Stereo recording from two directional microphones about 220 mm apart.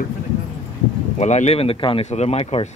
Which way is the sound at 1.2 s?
30° left (ahead or behind).